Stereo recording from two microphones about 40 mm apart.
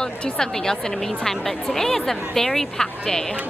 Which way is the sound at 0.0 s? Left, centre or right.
Centre.